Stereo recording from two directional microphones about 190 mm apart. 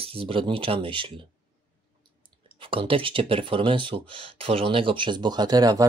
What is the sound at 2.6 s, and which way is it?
Speech, 30° right (ahead or behind).